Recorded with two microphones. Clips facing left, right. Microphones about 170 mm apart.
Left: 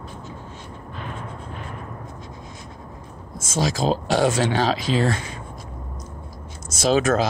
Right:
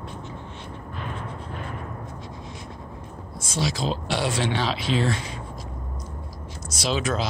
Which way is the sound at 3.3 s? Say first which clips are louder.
Left 4 dB; 45° left (ahead or behind).